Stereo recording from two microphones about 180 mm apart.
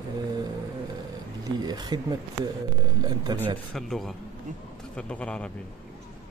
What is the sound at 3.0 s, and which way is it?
Speech, 20° right (ahead or behind).